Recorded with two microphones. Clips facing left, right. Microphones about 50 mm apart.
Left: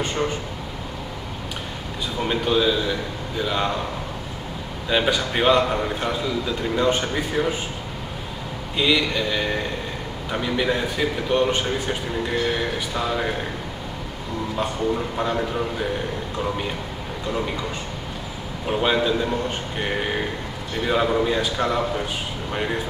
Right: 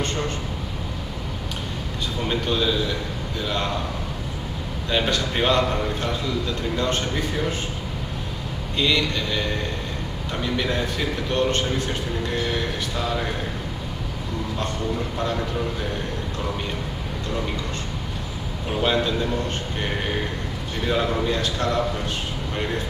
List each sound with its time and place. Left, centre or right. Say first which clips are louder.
2.2 s a man's voice: left 3 dB; centre
4.8 s a man's voice: left 2 dB; centre
8.7 s a man's voice: left 2 dB; centre
15.1 s a man's voice: left 2 dB; centre
18.7 s a man's voice: left 2 dB; centre
20.8 s a man's voice: left 3 dB; centre